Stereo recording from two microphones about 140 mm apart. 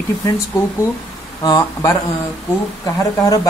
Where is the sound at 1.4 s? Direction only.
25° left (ahead or behind).